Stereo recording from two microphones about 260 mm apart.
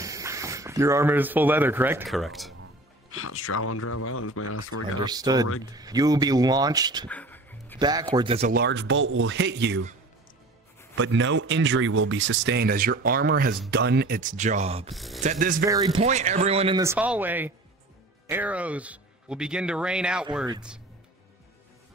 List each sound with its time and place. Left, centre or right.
0.0 s speech: centre
3.1 s speech: left
5.0 s speech: centre
7.1 s music: centre
7.8 s speech: centre
8.5 s speech: right
11.0 s speech: right
14.9 s speech: centre
15.1 s speech: right
15.7 s speech: centre
16.8 s speech: centre